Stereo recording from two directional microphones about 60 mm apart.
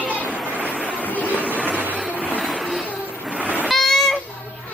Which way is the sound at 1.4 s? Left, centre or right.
Right.